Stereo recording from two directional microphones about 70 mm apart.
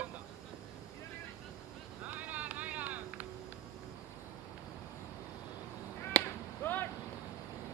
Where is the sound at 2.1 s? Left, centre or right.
Right.